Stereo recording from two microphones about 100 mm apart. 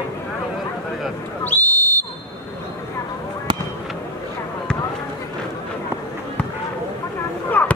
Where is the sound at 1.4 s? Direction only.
20° left (ahead or behind).